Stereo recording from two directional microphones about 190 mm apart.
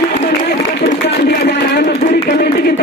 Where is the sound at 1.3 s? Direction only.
65° left (ahead or behind).